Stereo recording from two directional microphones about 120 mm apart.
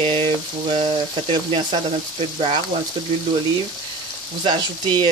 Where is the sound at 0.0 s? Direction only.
50° right (ahead or behind).